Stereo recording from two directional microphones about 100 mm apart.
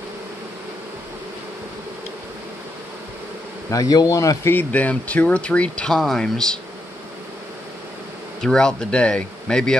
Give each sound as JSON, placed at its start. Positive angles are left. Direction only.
{"t": 3.7, "sound": "speech", "side_deg": 35}
{"t": 4.6, "sound": "speech", "side_deg": 15}
{"t": 8.4, "sound": "speech", "side_deg": 5}